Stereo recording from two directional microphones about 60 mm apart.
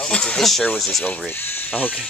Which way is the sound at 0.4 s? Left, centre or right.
Centre.